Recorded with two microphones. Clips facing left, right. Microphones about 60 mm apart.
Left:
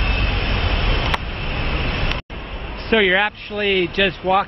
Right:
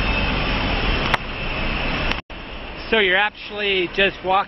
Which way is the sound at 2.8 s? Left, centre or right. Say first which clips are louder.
Left 2 dB; centre.